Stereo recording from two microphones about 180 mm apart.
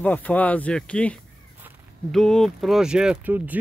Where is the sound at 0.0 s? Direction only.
10° left (ahead or behind).